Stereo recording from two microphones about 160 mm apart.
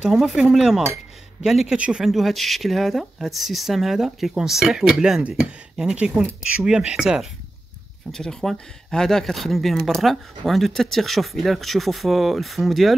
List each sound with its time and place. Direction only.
0.0 s speech: centre (ahead or behind)